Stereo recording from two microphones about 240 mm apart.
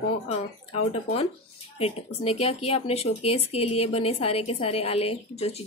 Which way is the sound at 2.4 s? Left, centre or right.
Left.